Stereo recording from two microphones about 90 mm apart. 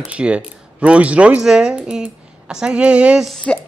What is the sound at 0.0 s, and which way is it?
Speech, 10° right (ahead or behind).